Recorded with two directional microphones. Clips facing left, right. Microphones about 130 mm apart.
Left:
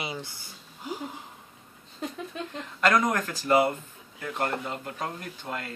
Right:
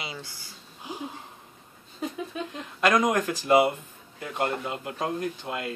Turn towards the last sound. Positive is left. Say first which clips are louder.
# right 5 dB
turn(degrees=-15)  # may be behind; listen again after turning